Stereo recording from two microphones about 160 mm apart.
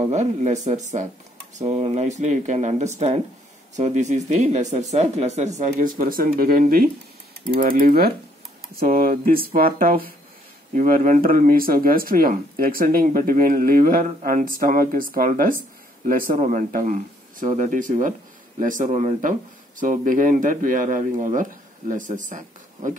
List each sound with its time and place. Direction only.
0.0 s speech: 45° right (ahead or behind)